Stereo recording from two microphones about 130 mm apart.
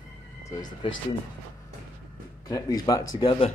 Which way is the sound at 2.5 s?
25° left (ahead or behind).